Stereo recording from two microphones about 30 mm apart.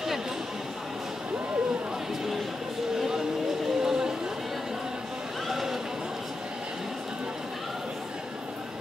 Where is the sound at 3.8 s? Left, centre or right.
Centre.